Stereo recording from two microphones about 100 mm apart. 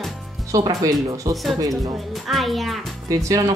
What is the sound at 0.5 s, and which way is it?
Speech, 35° right (ahead or behind).